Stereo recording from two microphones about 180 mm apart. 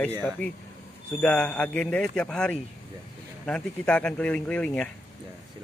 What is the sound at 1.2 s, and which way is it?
Speech, 5° left (ahead or behind).